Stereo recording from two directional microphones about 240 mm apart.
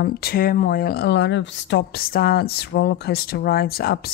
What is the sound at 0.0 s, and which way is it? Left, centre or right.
Speech, left.